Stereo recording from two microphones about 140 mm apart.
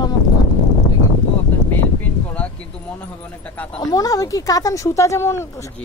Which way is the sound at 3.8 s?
25° left (ahead or behind).